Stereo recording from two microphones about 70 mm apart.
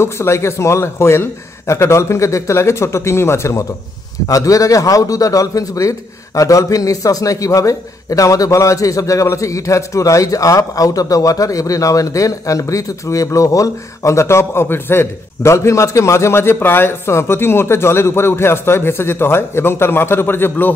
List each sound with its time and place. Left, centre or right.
0.0 s a man's voice: left
4.3 s a man's voice: left